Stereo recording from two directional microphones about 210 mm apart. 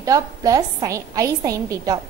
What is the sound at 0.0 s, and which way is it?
A woman's voice, 15° right (ahead or behind).